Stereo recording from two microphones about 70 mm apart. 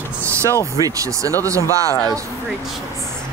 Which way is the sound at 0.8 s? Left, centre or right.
Right.